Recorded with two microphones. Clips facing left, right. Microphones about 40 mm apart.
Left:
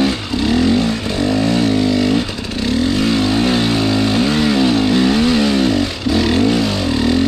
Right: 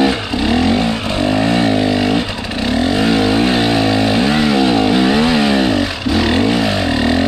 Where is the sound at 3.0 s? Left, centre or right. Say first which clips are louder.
Right 2 dB; centre.